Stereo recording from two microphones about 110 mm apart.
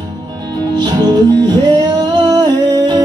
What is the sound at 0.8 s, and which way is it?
Music, 40° right (ahead or behind).